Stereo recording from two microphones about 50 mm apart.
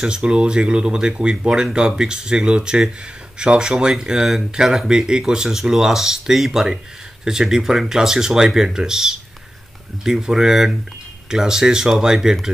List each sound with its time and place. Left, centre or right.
0.0 s speech: centre